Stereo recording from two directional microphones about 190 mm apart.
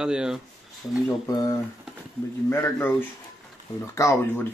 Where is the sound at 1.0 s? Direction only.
20° left (ahead or behind).